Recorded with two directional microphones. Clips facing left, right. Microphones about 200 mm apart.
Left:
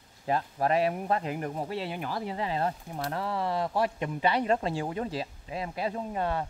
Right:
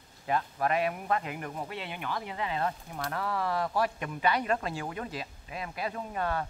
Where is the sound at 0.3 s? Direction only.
30° left (ahead or behind).